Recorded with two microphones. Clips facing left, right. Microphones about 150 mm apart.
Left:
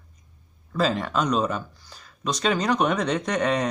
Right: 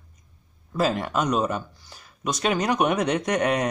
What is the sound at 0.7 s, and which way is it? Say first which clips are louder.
Speech: even; 10° right (ahead or behind).